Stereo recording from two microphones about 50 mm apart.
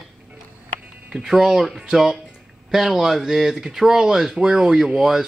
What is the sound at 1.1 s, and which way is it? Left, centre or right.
Speech, centre.